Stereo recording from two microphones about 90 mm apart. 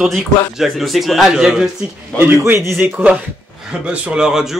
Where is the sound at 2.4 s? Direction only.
30° right (ahead or behind).